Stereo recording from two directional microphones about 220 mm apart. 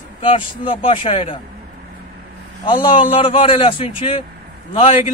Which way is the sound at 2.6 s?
20° left (ahead or behind).